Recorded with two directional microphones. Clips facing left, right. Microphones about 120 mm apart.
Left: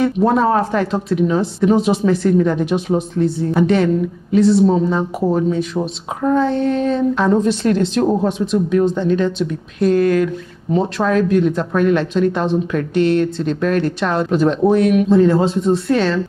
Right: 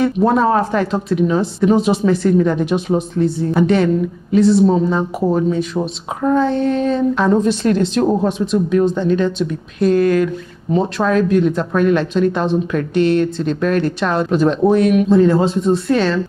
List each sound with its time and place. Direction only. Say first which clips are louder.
0.0 s speech: even; 25° right (ahead or behind)